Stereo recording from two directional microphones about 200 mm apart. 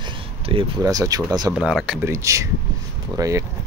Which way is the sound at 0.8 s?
15° right (ahead or behind).